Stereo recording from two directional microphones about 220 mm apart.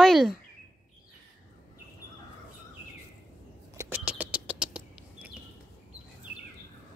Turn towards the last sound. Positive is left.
turn(degrees=-5)  # may be behind; listen again after turning